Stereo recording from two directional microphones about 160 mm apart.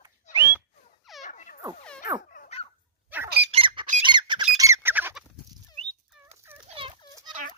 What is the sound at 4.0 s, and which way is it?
Squeak, 30° right (ahead or behind).